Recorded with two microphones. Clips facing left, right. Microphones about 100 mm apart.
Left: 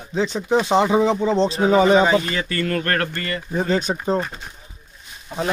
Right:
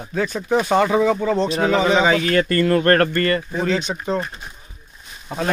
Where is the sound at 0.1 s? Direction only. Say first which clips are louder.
Left 1 dB; 20° left (ahead or behind).